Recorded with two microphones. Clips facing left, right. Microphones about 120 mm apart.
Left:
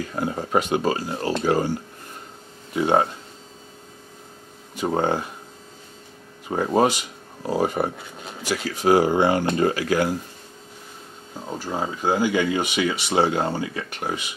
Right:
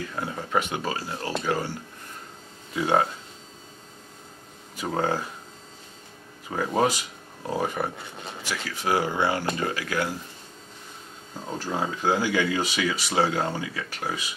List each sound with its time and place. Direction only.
0.3 s speech: 30° left (ahead or behind)
2.7 s speech: 25° left (ahead or behind)
4.7 s speech: 25° left (ahead or behind)
6.5 s speech: 25° left (ahead or behind)
7.9 s speech: centre (ahead or behind)
8.6 s speech: 40° left (ahead or behind)
11.3 s speech: 10° left (ahead or behind)